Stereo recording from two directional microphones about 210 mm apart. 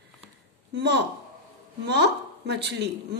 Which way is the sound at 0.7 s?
55° right (ahead or behind).